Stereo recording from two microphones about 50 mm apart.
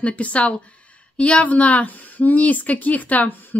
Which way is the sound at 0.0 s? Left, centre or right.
Left.